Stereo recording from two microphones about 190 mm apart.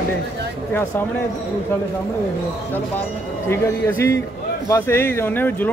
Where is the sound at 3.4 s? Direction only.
15° left (ahead or behind).